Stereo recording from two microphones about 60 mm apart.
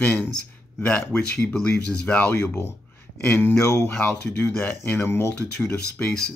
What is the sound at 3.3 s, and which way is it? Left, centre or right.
Speech, left.